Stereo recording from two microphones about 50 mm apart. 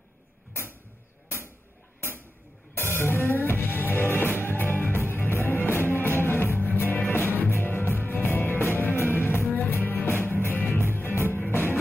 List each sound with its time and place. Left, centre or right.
2.0 s a sound: left
2.8 s music: left
3.2 s music: left
3.5 s music: left